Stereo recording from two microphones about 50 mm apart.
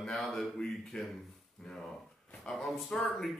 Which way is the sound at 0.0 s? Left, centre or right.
Centre.